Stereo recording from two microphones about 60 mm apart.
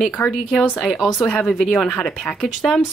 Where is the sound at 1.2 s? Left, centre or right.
Centre.